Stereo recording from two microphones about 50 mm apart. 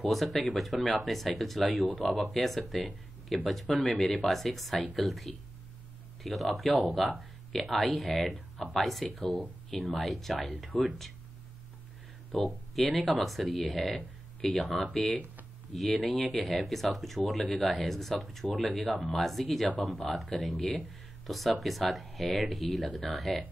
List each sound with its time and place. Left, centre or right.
0.0 s speech: centre
12.4 s speech: centre